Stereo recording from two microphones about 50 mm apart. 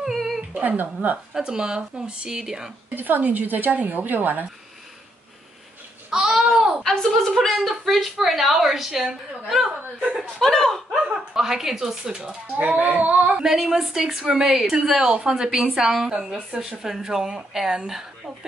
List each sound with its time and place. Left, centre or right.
0.0 s a sound: centre
0.6 s a woman's voice: right
1.3 s a woman's voice: centre
2.9 s a woman's voice: right
6.0 s babbling: centre
6.8 s a woman's voice: centre
10.4 s speech: centre
11.0 s a woman's voice: centre
12.5 s a woman's voice: right
13.4 s a woman's voice: centre